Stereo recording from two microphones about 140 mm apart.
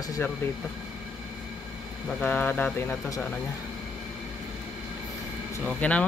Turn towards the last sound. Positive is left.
turn(degrees=10)  # may be behind; listen again after turning